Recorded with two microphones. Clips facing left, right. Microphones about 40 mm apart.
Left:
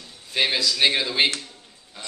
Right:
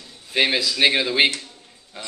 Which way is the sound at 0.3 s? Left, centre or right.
Centre.